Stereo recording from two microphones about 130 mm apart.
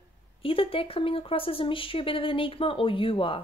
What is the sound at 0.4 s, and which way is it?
Speech, 45° left (ahead or behind).